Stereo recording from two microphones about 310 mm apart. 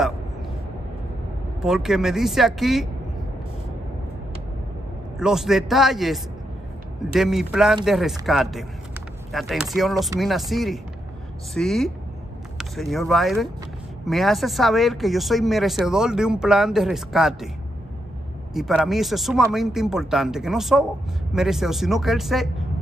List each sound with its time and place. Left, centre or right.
1.6 s speech: centre
5.2 s speech: centre
18.5 s speech: centre